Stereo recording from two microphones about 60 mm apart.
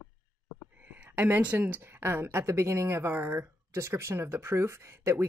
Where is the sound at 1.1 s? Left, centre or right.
Right.